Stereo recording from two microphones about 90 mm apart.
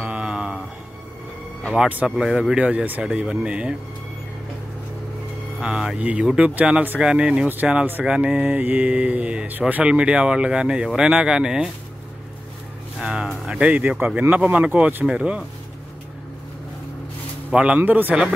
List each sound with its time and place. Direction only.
0.0 s a sound: 10° right (ahead or behind)
2.0 s speech: 5° right (ahead or behind)
5.6 s speech: 10° right (ahead or behind)
13.0 s speech: 10° right (ahead or behind)
17.5 s speech: 10° right (ahead or behind)